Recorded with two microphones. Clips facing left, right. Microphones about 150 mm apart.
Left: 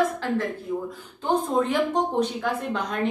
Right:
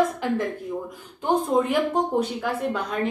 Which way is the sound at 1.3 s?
10° right (ahead or behind).